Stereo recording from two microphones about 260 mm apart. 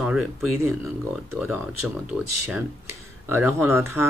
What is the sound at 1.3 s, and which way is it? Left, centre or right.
Speech, centre.